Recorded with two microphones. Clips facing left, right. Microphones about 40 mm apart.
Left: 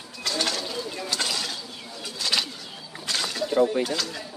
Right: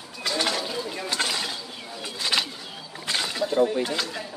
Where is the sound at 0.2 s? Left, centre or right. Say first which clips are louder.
Right 2 dB; centre.